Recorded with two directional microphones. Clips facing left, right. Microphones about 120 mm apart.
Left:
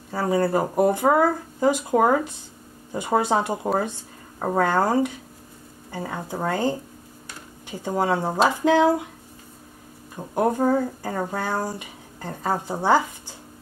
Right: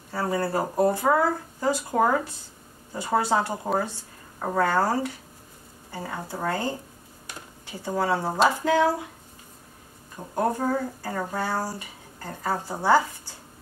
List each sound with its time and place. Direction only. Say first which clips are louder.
0.1 s speech: left 4 dB; 15° left (ahead or behind)
10.3 s speech: left 4 dB; 20° left (ahead or behind)